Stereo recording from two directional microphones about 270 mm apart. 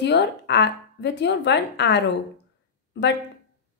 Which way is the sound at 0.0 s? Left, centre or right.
Left.